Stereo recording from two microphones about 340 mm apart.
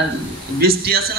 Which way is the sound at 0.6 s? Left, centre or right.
Right.